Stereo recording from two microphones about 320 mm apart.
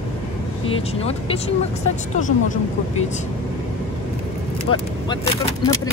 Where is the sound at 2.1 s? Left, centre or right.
Left.